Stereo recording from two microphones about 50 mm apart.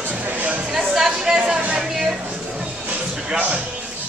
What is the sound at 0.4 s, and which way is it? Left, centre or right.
Music, right.